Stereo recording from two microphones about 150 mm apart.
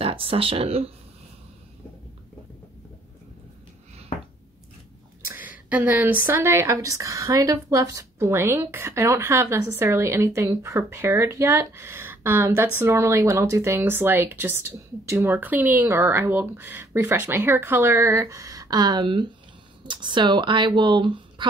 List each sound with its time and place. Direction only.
0.0 s speech: 35° right (ahead or behind)
5.3 s a woman's voice: 10° right (ahead or behind); by 21.5 s 30° right (ahead or behind)